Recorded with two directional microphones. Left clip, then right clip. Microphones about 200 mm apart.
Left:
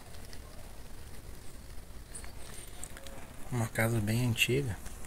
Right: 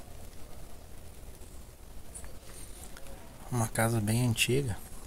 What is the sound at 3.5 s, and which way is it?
Speech, 15° right (ahead or behind).